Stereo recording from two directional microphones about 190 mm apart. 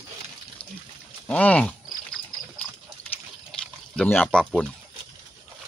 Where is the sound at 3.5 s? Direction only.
5° left (ahead or behind).